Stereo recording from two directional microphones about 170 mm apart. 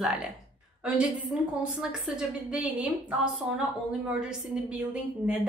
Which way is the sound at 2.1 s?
5° right (ahead or behind).